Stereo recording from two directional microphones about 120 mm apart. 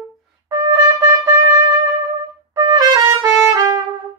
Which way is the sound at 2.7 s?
30° right (ahead or behind).